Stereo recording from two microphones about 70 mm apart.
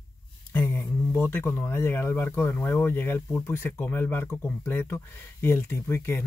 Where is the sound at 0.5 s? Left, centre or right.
Left.